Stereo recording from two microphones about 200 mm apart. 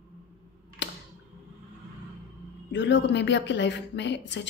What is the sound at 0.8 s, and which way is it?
Tick, 60° left (ahead or behind).